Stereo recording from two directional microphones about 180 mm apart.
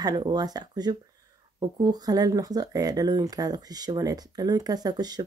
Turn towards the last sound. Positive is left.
turn(degrees=-20)  # may be behind; listen again after turning